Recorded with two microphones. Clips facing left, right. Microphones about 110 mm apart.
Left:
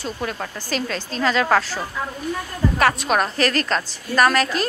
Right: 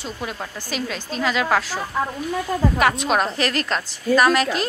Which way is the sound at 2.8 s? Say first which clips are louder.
Left 3 dB; 20° right (ahead or behind).